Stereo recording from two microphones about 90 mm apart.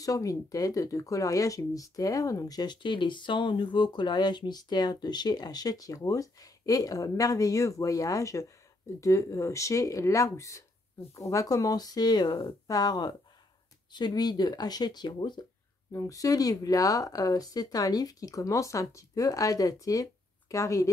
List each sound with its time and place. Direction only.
0.0 s speech: 40° left (ahead or behind); by 15.4 s 55° left (ahead or behind)
15.9 s speech: 35° left (ahead or behind)